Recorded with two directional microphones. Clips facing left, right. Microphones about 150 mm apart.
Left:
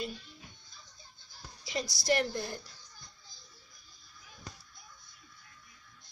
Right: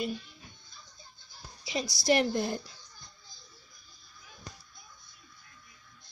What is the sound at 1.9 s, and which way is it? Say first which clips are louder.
Speech: right 4 dB; 75° right (ahead or behind).